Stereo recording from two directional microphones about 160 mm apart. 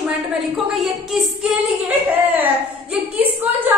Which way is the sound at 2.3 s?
10° right (ahead or behind).